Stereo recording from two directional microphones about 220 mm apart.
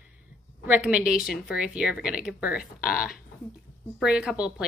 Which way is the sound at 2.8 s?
40° left (ahead or behind).